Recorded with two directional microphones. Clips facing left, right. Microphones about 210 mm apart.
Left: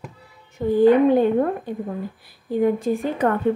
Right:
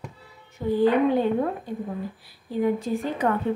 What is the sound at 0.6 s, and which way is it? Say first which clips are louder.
Speech: left 4 dB; 55° left (ahead or behind).